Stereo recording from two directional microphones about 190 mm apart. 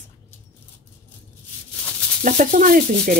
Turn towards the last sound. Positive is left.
turn(degrees=-45)  # may be behind; listen again after turning